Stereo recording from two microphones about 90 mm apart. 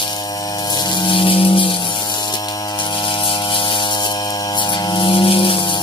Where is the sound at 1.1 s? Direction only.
75° left (ahead or behind).